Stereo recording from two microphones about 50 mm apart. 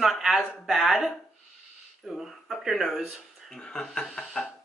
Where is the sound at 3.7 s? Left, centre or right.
Centre.